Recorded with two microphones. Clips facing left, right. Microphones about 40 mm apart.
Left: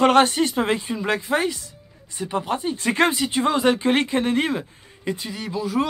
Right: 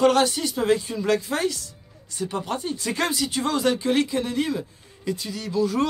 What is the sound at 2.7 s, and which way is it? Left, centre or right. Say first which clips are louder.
Speech: left 7 dB; left.